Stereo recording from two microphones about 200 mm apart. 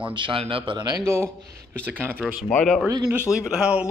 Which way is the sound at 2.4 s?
5° left (ahead or behind).